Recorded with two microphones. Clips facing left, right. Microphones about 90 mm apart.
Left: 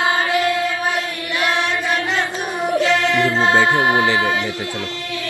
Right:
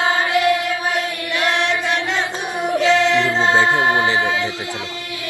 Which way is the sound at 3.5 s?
20° right (ahead or behind).